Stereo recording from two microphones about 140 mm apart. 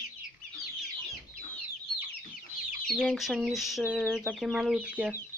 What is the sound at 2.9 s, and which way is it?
Speech, 5° left (ahead or behind).